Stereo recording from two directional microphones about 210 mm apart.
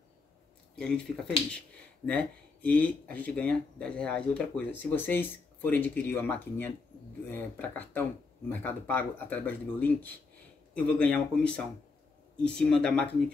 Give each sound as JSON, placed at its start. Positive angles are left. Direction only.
{"t": 0.7, "sound": "speech", "side_deg": 5}